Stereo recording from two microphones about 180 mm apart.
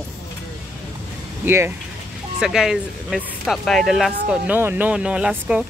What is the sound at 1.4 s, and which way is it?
Speech, 15° right (ahead or behind).